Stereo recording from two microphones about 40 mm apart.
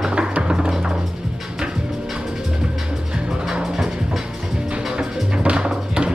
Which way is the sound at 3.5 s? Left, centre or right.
Centre.